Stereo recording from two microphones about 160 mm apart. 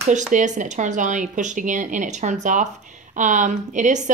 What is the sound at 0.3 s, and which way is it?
Speech, 50° right (ahead or behind).